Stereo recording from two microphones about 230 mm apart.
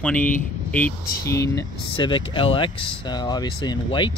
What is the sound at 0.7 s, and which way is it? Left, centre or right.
Speech, centre.